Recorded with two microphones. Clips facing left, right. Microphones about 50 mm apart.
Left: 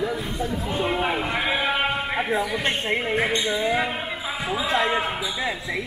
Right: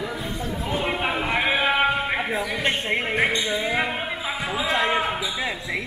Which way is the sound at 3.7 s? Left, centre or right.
Centre.